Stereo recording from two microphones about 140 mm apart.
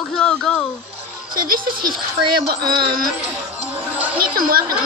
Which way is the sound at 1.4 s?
90° right.